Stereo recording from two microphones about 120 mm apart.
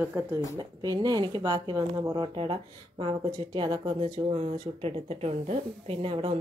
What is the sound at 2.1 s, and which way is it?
Speech, 45° right (ahead or behind).